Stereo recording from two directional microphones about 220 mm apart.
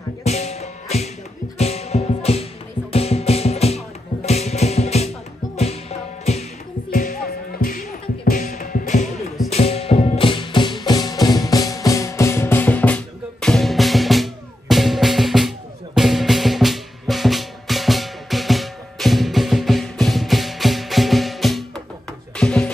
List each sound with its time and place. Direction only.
0.2 s music: 30° left (ahead or behind)
6.9 s music: 40° left (ahead or behind); by 22.7 s 5° left (ahead or behind)